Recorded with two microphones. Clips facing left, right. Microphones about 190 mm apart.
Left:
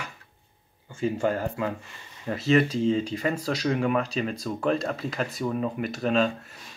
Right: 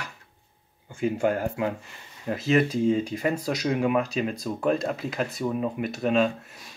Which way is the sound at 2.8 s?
10° right (ahead or behind).